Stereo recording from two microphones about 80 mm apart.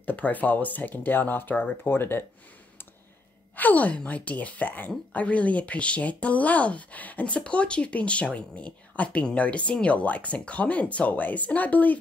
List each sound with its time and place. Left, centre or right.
0.0 s speech: left
3.5 s speech: left